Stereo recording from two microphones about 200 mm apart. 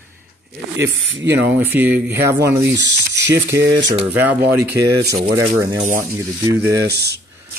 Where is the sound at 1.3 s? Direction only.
10° right (ahead or behind).